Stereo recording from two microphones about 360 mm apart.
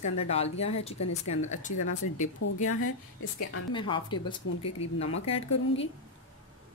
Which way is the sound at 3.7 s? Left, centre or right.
Centre.